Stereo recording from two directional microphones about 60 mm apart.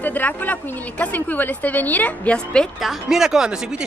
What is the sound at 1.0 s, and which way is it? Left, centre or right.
A woman's voice, left.